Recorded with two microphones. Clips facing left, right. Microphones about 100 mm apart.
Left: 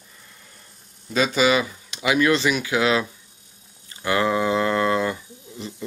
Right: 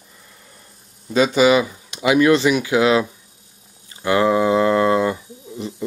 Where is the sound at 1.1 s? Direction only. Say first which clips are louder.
Right 5 dB; 20° right (ahead or behind).